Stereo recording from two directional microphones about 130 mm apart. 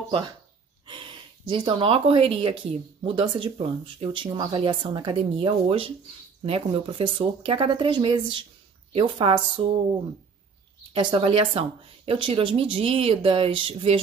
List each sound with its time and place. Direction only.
0.8 s speech: 40° right (ahead or behind)
10.9 s speech: 40° right (ahead or behind)